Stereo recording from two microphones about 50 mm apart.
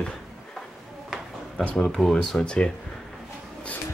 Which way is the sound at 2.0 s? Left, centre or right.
Centre.